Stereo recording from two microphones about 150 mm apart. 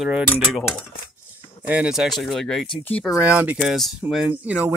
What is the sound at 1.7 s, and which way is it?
Speech, 5° right (ahead or behind).